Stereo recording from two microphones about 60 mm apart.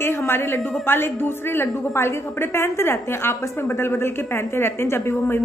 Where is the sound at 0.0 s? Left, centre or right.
Left.